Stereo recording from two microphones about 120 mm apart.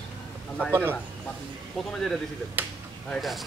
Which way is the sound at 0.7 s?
15° right (ahead or behind).